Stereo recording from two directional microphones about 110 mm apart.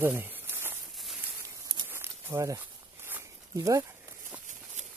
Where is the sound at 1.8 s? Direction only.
20° right (ahead or behind).